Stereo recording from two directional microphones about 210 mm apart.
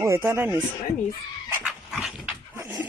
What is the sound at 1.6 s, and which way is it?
Dog, 5° right (ahead or behind).